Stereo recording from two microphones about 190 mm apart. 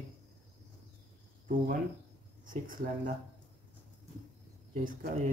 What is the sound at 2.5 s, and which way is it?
Speech, 45° right (ahead or behind).